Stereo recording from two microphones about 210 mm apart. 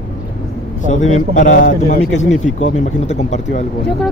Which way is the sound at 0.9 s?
35° left (ahead or behind).